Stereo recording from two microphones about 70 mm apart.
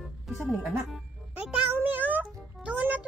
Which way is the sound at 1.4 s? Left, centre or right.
Right.